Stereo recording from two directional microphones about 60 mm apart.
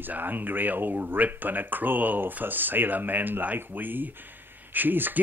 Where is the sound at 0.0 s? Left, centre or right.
Right.